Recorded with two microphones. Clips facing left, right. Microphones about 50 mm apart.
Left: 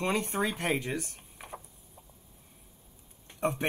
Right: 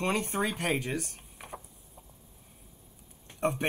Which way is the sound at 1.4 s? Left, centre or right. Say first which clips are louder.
Even; centre.